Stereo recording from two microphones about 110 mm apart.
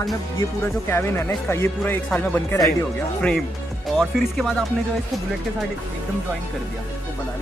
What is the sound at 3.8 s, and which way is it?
Speech, centre (ahead or behind).